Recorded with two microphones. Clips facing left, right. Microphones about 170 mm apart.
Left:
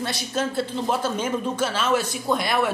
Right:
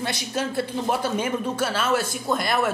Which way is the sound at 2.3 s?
Centre (ahead or behind).